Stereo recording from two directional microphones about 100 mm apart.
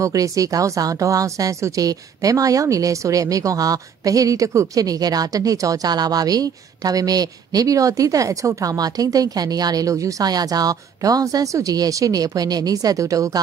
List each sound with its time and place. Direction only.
0.0 s a woman's voice: 35° right (ahead or behind)